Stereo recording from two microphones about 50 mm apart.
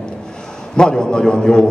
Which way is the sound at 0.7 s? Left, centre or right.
Centre.